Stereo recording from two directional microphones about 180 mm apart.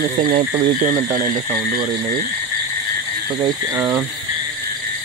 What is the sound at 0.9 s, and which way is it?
Speech, 20° right (ahead or behind).